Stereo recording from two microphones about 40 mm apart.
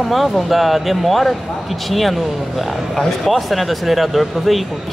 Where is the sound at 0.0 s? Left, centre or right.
Centre.